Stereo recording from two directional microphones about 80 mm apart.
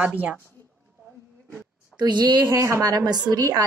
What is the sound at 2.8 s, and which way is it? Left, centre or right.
Speech, right.